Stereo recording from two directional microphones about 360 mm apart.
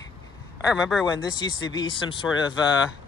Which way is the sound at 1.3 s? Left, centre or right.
Centre.